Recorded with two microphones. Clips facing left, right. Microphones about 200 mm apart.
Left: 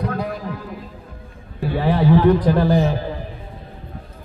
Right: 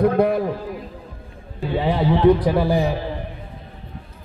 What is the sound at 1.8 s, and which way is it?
A man's voice, 15° right (ahead or behind).